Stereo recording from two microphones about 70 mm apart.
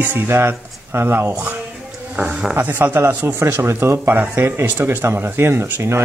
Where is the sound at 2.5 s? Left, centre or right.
Right.